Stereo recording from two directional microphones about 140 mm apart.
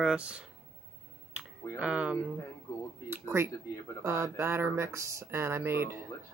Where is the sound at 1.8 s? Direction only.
10° right (ahead or behind).